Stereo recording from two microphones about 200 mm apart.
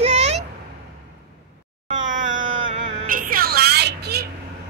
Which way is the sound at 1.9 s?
40° right (ahead or behind).